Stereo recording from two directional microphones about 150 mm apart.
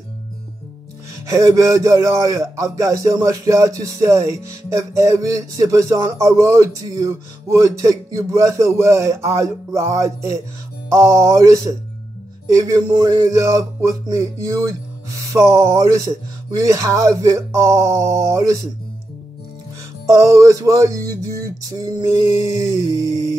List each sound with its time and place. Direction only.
1.2 s speech: 20° right (ahead or behind)
20.2 s speech: 20° right (ahead or behind)